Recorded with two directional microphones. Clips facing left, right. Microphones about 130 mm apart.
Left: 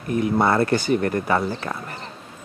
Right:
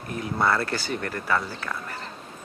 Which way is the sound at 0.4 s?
20° left (ahead or behind).